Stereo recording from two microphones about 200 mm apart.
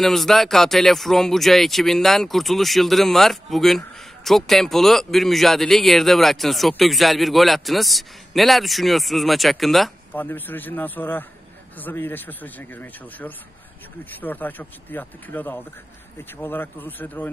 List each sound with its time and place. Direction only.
0.0 s speech: centre (ahead or behind)